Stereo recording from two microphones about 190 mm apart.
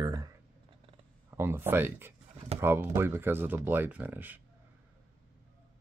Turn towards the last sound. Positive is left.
turn(degrees=-10)  # may be behind; listen again after turning